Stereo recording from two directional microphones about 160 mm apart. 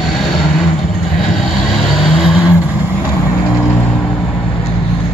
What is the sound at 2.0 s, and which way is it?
Vehicle, centre (ahead or behind).